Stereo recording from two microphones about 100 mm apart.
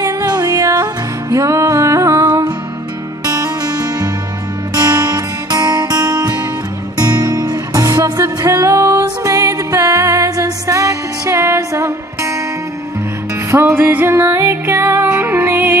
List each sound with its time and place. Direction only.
0.0 s music: 40° right (ahead or behind)
13.5 s music: 20° right (ahead or behind)